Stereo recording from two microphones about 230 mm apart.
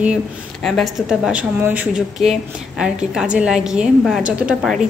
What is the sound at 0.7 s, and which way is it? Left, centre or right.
A woman's voice, centre.